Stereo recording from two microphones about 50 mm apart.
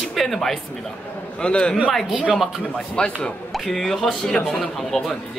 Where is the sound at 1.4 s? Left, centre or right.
Centre.